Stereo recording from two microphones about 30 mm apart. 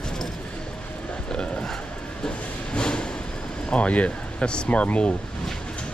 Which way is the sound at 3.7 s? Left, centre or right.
Left.